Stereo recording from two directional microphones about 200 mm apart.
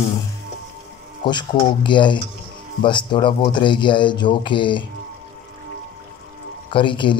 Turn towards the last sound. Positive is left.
turn(degrees=25)  # may be behind; listen again after turning